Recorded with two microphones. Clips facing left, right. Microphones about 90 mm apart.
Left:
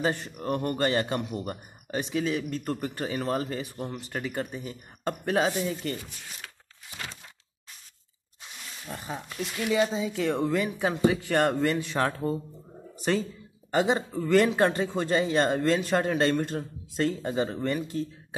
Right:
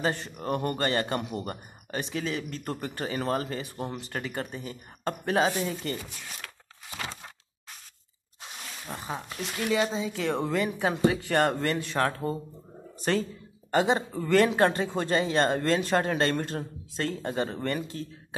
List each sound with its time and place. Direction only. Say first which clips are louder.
0.0 s a man's voice: left 1 dB; 5° left (ahead or behind)
6.9 s a sound: right 3 dB; 90° right
8.9 s speech: even; 20° right (ahead or behind)
9.7 s speech: left 1 dB; 5° left (ahead or behind)
13.7 s a man's voice: even; 10° left (ahead or behind)